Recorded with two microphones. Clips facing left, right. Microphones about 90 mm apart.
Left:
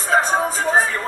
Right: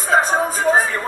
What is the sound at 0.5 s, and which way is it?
Music, 15° right (ahead or behind).